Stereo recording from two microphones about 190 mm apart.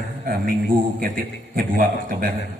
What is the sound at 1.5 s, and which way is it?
Speech, 50° right (ahead or behind).